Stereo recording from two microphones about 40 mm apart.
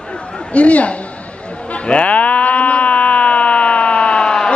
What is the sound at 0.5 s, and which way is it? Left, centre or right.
Speech, left.